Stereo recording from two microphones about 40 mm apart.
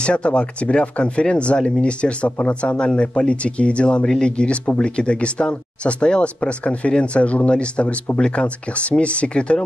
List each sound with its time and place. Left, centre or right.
0.0 s speech: left